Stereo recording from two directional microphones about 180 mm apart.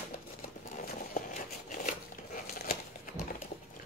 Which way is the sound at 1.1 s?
45° left (ahead or behind).